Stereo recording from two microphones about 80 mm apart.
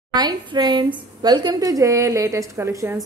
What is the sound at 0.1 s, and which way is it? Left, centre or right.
A woman's voice, right.